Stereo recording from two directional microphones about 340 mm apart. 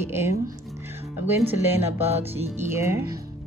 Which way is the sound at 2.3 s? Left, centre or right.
Centre.